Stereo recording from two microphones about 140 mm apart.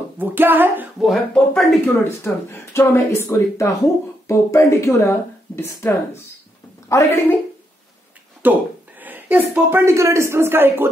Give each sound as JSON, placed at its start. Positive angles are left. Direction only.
{"t": 0.2, "sound": "speech", "side_deg": -15}
{"t": 1.0, "sound": "speech", "side_deg": 0}
{"t": 1.9, "sound": "speech", "side_deg": 15}
{"t": 8.4, "sound": "speech", "side_deg": -10}